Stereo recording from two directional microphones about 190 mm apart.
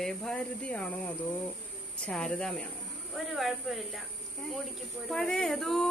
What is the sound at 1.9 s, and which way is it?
Speech, 5° left (ahead or behind).